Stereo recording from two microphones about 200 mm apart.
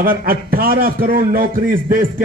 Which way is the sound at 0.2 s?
50° right (ahead or behind).